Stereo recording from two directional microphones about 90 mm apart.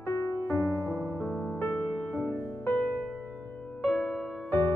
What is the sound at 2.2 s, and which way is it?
Music, 25° left (ahead or behind).